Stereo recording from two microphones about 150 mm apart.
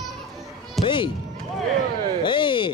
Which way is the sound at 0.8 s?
35° left (ahead or behind).